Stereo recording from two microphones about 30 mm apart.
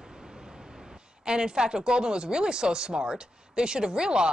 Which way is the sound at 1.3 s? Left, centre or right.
Right.